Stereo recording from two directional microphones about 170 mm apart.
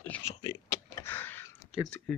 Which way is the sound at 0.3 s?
30° left (ahead or behind).